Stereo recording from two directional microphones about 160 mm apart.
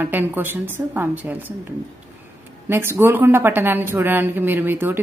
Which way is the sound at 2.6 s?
15° right (ahead or behind).